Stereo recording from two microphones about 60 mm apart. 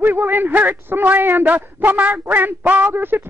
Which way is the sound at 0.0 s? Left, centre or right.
Right.